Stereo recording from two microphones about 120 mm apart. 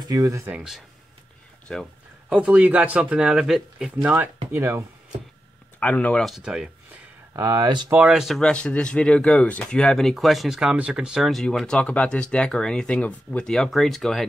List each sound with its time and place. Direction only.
0.0 s speech: 30° right (ahead or behind)
0.5 s speech: 5° right (ahead or behind)
1.7 s speech: 5° left (ahead or behind)
2.2 s speech: 10° right (ahead or behind)
4.0 s speech: 15° right (ahead or behind)
5.8 s speech: 10° left (ahead or behind); by 6.7 s 5° right (ahead or behind)
7.3 s speech: 30° right (ahead or behind)
7.9 s speech: 10° right (ahead or behind)